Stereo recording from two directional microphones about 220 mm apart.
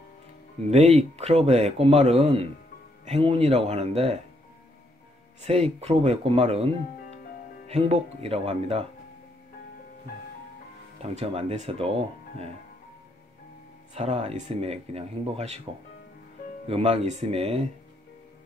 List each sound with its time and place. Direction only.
0.7 s speech: 30° right (ahead or behind)
5.4 s speech: 30° right (ahead or behind)
11.0 s speech: 25° right (ahead or behind)
13.9 s speech: 30° right (ahead or behind)
16.6 s speech: 25° right (ahead or behind)